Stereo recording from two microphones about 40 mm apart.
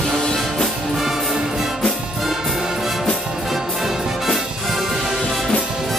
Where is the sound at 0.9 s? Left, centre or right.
Centre.